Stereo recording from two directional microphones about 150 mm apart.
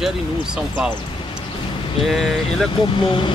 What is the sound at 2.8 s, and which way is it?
Speech, 35° left (ahead or behind).